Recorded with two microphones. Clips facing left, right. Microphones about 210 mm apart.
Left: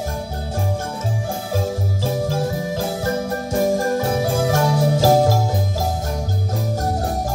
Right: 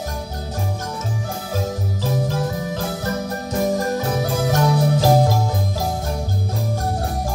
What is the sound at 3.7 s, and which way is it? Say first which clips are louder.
Music: left 2 dB; 25° left (ahead or behind).